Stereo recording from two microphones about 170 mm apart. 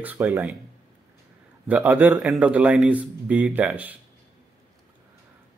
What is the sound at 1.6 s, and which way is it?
Speech, 10° right (ahead or behind).